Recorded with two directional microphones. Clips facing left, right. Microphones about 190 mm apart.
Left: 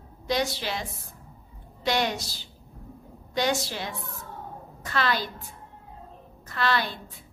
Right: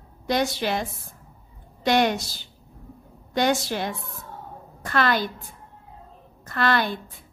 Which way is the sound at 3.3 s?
55° right (ahead or behind).